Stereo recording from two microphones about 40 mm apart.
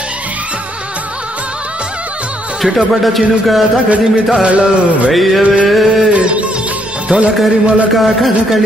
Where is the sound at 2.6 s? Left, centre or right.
Centre.